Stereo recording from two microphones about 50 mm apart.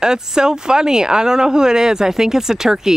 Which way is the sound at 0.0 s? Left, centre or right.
Centre.